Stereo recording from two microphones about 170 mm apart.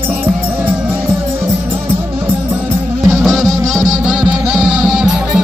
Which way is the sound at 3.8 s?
25° right (ahead or behind).